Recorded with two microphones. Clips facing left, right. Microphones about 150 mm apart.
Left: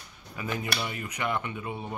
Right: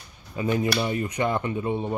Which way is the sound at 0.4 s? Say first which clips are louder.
Right 8 dB; 30° right (ahead or behind).